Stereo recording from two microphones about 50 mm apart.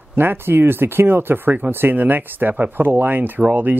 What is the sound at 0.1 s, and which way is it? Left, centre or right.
Speech, right.